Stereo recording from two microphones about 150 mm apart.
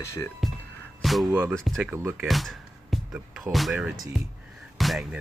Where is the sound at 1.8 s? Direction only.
15° right (ahead or behind).